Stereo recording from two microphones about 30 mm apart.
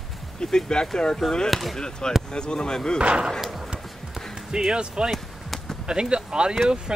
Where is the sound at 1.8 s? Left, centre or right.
Left.